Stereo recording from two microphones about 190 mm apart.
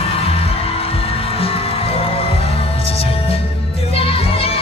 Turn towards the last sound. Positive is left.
turn(degrees=30)  # may be behind; listen again after turning